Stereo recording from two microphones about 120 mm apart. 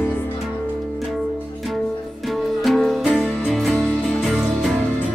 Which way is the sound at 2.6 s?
Centre (ahead or behind).